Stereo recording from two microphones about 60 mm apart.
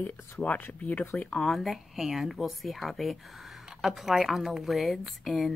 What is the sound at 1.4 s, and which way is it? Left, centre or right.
A woman's voice, centre.